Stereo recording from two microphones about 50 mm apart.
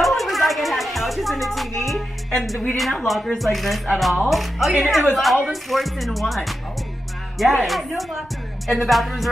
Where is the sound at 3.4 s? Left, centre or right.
Centre.